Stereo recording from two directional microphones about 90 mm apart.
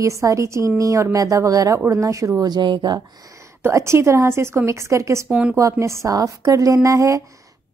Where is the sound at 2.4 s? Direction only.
55° right (ahead or behind).